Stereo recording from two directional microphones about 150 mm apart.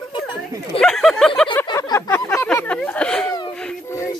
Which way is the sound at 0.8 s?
5° left (ahead or behind).